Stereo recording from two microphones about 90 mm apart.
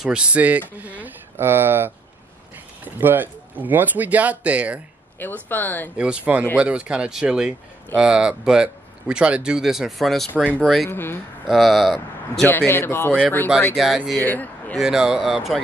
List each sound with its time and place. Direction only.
0.0 s speech: 10° right (ahead or behind)
5.2 s speech: 20° left (ahead or behind)
5.9 s speech: 10° right (ahead or behind)
10.4 s speech: 15° left (ahead or behind)
11.4 s speech: centre (ahead or behind)
12.4 s speech: 25° left (ahead or behind)
13.7 s speech: 5° right (ahead or behind)
14.2 s speech: 20° left (ahead or behind)
14.8 s speech: 5° right (ahead or behind)